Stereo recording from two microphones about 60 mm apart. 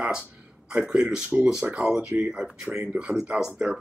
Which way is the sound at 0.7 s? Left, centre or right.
Centre.